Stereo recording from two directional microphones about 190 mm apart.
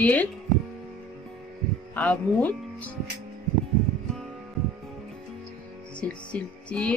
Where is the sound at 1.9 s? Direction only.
10° left (ahead or behind).